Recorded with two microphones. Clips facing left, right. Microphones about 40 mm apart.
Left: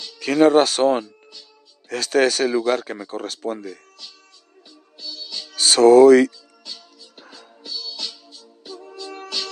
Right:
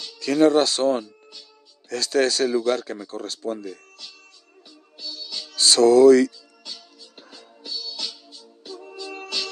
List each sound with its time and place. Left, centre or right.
0.2 s speech: left
3.2 s speech: left
5.7 s speech: left
7.3 s music: centre